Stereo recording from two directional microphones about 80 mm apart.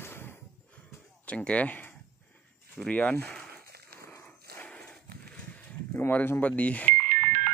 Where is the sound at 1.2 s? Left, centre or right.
Centre.